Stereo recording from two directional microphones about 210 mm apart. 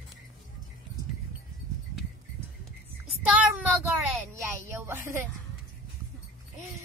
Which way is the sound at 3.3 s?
5° right (ahead or behind).